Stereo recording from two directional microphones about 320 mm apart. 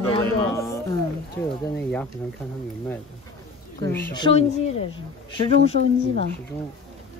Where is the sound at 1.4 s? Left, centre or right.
Centre.